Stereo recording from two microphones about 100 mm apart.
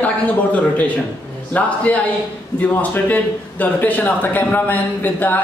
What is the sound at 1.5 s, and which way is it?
A man's voice, 15° left (ahead or behind).